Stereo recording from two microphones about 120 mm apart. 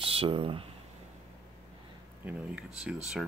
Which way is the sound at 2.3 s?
10° right (ahead or behind).